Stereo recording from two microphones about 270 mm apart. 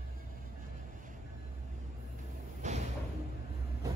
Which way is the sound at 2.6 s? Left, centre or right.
Right.